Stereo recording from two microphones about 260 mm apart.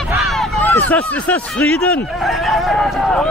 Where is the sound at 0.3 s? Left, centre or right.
Centre.